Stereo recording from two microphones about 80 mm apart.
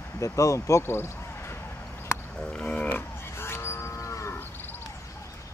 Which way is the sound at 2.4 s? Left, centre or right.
Centre.